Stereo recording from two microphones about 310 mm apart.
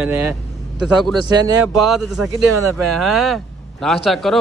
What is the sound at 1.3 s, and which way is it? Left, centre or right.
Speech, centre.